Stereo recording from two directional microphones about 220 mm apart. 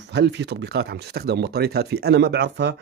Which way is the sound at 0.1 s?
50° right (ahead or behind).